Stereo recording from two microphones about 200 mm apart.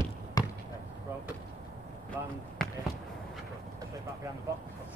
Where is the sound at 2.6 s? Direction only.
5° left (ahead or behind).